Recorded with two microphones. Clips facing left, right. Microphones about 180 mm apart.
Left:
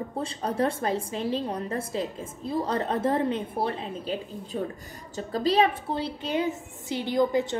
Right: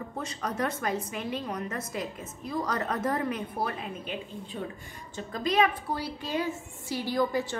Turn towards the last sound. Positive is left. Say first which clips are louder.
# left 4 dB
turn(degrees=20)  # may be behind; listen again after turning